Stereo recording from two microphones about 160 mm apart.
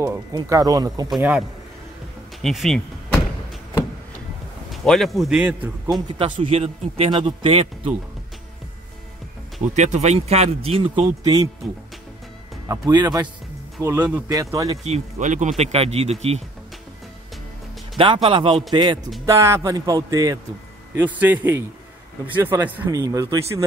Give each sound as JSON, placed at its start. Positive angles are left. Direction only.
{"t": 0.0, "sound": "speech", "side_deg": -20}
{"t": 1.1, "sound": "a man's voice", "side_deg": -10}
{"t": 2.4, "sound": "a man's voice", "side_deg": 0}
{"t": 4.6, "sound": "a man's voice", "side_deg": 0}
{"t": 6.1, "sound": "a man's voice", "side_deg": -35}
{"t": 9.8, "sound": "a man's voice", "side_deg": -45}
{"t": 12.6, "sound": "a man's voice", "side_deg": -25}
{"t": 14.9, "sound": "speech", "side_deg": -50}
{"t": 17.9, "sound": "a man's voice", "side_deg": -35}
{"t": 20.9, "sound": "a man's voice", "side_deg": -10}
{"t": 22.8, "sound": "speech", "side_deg": -20}